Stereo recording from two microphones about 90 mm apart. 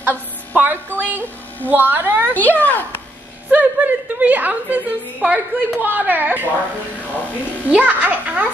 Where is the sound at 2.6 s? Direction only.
20° left (ahead or behind).